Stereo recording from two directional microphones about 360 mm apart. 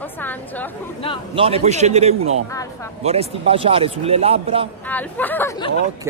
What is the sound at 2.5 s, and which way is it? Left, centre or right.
Speech, centre.